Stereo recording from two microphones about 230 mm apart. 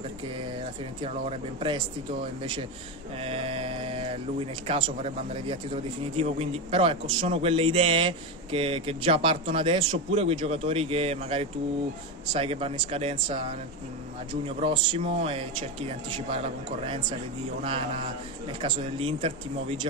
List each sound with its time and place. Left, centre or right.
1.0 s speech: right
3.2 s mantra: right
4.6 s speech: right
18.6 s speech: right